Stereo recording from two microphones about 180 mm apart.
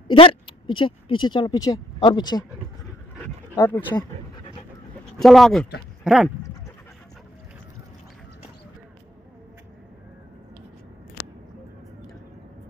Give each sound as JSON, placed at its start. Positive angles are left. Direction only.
{"t": 0.1, "sound": "speech", "side_deg": 30}
{"t": 3.5, "sound": "speech", "side_deg": 15}
{"t": 5.2, "sound": "speech", "side_deg": 0}